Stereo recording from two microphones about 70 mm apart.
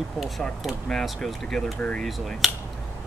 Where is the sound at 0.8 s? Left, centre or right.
Centre.